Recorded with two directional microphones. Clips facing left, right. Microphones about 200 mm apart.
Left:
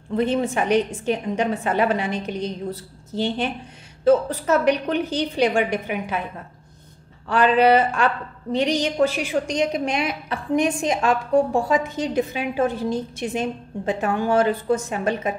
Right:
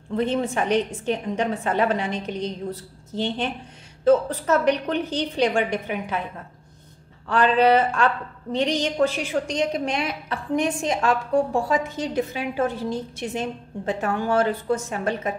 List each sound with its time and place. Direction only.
0.1 s a woman's voice: 10° left (ahead or behind)
7.2 s a woman's voice: 10° left (ahead or behind)